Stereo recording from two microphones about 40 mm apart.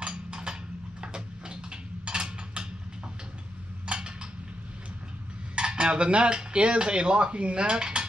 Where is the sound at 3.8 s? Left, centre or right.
Right.